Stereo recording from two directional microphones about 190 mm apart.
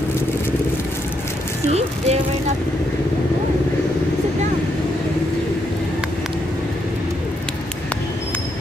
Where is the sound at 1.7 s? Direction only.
35° right (ahead or behind).